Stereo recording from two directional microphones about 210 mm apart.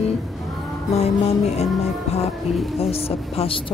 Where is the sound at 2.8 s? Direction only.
30° left (ahead or behind).